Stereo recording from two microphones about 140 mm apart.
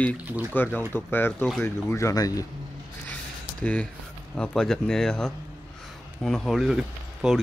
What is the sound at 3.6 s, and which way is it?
Speech, 10° left (ahead or behind).